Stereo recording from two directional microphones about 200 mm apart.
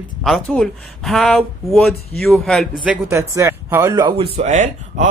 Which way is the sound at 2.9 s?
15° right (ahead or behind).